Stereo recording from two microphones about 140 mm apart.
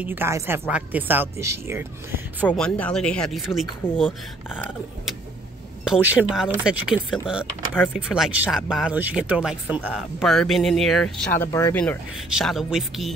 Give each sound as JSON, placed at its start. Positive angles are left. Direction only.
{"t": 0.0, "sound": "speech", "side_deg": -15}
{"t": 2.4, "sound": "speech", "side_deg": 10}
{"t": 3.8, "sound": "speech", "side_deg": 15}
{"t": 5.9, "sound": "speech", "side_deg": -5}
{"t": 11.4, "sound": "speech", "side_deg": 20}
{"t": 12.3, "sound": "speech", "side_deg": 0}